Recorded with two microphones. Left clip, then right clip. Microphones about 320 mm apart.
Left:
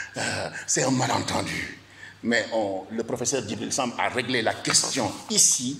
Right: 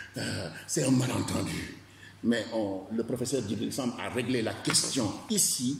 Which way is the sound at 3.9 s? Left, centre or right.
Centre.